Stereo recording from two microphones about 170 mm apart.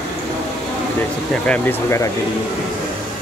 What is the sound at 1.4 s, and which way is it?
Speech, 10° left (ahead or behind).